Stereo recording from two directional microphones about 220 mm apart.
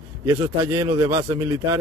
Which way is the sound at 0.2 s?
15° right (ahead or behind).